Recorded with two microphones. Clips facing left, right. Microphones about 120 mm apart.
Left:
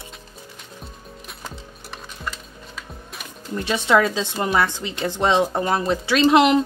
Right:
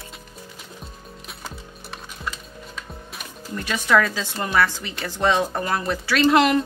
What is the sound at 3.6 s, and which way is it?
A woman's voice, 20° left (ahead or behind).